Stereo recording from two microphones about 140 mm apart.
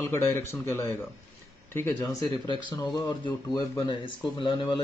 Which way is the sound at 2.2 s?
30° left (ahead or behind).